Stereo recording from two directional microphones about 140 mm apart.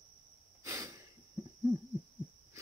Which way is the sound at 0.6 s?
20° right (ahead or behind).